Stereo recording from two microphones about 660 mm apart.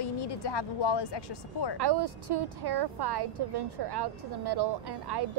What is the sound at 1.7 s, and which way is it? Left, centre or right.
A woman's voice, right.